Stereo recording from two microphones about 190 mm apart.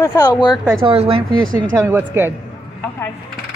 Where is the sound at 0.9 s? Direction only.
30° right (ahead or behind).